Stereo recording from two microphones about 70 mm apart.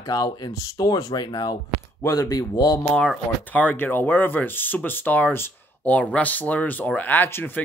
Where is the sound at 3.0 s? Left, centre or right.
Left.